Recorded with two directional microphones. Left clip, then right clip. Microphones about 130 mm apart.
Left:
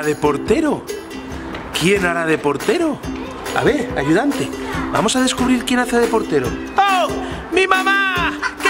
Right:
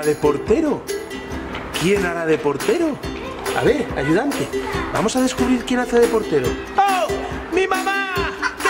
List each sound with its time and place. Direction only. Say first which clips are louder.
0.2 s speech: left 1 dB; 55° left (ahead or behind)
1.9 s speech: left 2 dB; 45° left (ahead or behind)
3.5 s speech: left 2 dB; 40° left (ahead or behind)
5.0 s speech: left 2 dB; 55° left (ahead or behind)
7.5 s music: left 5 dB; 45° left (ahead or behind)